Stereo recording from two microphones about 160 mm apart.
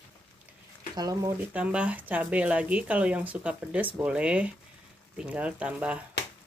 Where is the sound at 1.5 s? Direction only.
5° right (ahead or behind).